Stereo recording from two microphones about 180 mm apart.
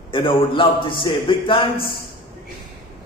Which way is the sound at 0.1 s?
30° left (ahead or behind).